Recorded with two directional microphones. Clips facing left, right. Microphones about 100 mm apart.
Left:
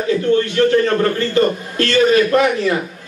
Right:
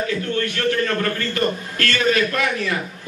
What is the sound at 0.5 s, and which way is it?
A man's voice, 25° left (ahead or behind).